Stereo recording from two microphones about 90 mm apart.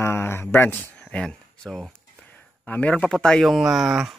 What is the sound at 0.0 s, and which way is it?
Speech, 30° left (ahead or behind).